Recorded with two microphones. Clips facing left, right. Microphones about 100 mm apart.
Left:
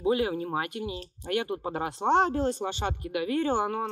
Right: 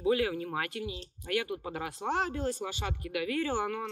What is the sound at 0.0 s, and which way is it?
Speech, 25° left (ahead or behind).